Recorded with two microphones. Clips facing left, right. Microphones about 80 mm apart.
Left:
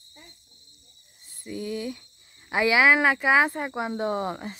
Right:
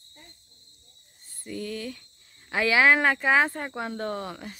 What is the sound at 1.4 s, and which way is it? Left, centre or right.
Speech, centre.